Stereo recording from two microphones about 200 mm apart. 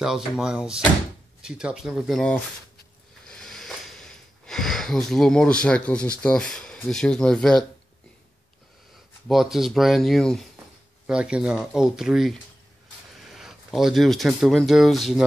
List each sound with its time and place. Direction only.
0.0 s speech: 5° right (ahead or behind)
3.3 s a sound: 5° left (ahead or behind)
9.3 s speech: centre (ahead or behind)